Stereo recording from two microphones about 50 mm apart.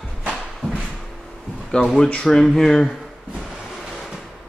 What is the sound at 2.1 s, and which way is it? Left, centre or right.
Speech, centre.